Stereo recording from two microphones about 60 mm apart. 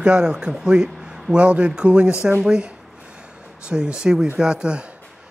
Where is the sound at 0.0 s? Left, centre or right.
Centre.